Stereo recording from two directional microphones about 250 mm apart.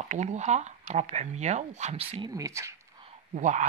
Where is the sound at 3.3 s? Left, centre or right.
Right.